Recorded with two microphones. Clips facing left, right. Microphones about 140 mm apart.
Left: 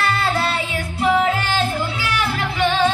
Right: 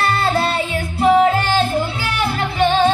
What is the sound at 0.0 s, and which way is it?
Music, 30° right (ahead or behind).